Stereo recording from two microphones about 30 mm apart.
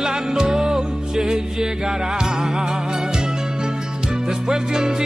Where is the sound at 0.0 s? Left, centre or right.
Right.